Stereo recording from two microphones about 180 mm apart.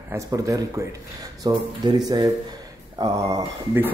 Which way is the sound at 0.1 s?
15° right (ahead or behind).